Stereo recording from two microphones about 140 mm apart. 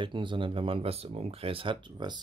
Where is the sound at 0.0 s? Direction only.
35° right (ahead or behind).